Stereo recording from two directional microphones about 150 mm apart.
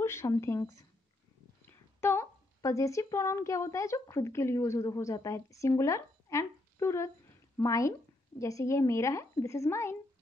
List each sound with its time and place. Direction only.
0.0 s speech: 20° left (ahead or behind)
2.0 s a woman's voice: 15° left (ahead or behind)